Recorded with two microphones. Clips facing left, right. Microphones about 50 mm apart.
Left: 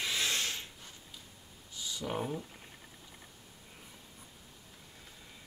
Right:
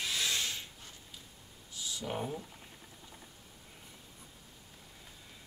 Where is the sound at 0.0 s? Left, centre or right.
Centre.